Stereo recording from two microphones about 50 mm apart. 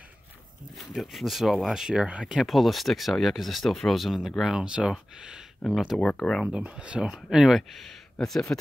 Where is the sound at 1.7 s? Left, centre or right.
Centre.